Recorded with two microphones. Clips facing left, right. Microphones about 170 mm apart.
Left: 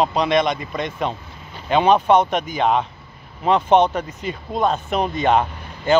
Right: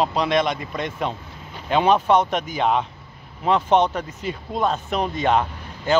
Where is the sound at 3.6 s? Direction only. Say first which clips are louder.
Left 4 dB; 20° left (ahead or behind).